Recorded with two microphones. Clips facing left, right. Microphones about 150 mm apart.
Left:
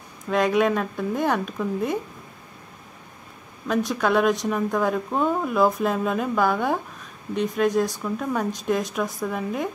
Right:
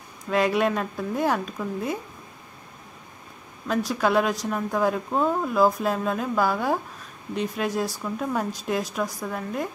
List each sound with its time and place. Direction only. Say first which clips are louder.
0.3 s speech: left 2 dB; 5° right (ahead or behind)
3.6 s speech: left 1 dB; centre (ahead or behind)